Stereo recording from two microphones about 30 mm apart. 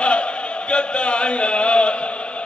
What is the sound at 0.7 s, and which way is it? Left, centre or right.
Chant, left.